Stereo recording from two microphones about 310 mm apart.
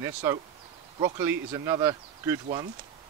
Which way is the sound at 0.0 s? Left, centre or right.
Centre.